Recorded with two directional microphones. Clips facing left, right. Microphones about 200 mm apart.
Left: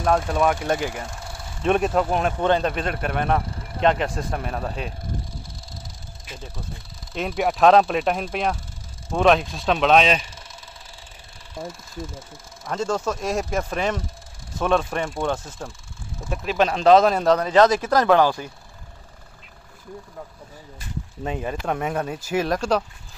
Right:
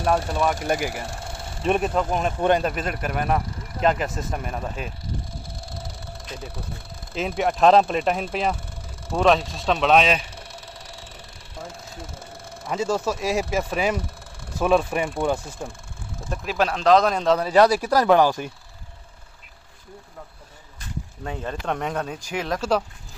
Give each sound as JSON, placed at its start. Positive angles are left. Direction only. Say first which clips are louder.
{"t": 0.7, "sound": "speech", "louder": "even", "side_deg": -10}
{"t": 2.4, "sound": "speech", "louder": "right 1 dB", "side_deg": -15}
{"t": 2.7, "sound": "speech", "louder": "left 2 dB", "side_deg": -5}
{"t": 6.3, "sound": "speech", "louder": "right 2 dB", "side_deg": -65}
{"t": 7.2, "sound": "speech", "louder": "left 1 dB", "side_deg": 0}
{"t": 10.3, "sound": "a sound", "louder": "right 4 dB", "side_deg": -70}
{"t": 12.6, "sound": "speech", "louder": "right 1 dB", "side_deg": -5}
{"t": 17.4, "sound": "speech", "louder": "even", "side_deg": -10}
{"t": 21.2, "sound": "speech", "louder": "left 4 dB", "side_deg": 15}